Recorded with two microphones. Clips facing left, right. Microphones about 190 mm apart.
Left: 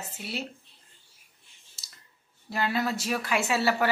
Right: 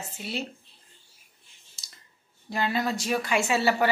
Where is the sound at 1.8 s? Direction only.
5° left (ahead or behind).